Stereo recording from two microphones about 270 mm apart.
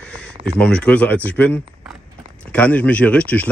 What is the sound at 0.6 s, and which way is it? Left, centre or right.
Speech, centre.